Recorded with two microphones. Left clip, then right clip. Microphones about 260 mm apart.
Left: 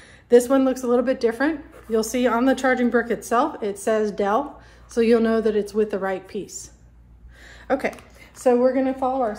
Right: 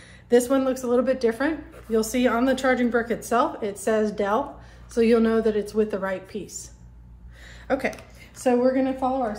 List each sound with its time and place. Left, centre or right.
0.3 s a woman's voice: left
7.4 s a sound: left
8.4 s a woman's voice: left